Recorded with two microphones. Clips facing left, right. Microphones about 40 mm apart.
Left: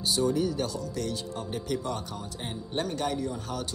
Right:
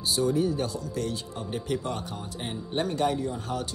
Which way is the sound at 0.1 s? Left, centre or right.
Right.